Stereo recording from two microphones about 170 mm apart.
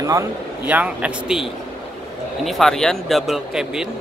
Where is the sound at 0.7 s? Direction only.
10° right (ahead or behind).